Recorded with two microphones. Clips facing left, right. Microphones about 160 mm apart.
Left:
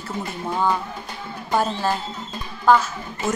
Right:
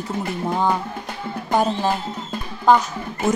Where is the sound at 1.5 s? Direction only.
15° right (ahead or behind).